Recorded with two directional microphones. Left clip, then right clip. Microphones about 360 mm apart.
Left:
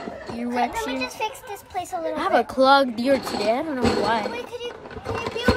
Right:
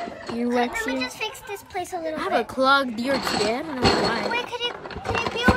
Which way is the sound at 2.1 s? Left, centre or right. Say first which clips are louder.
Left 4 dB; centre.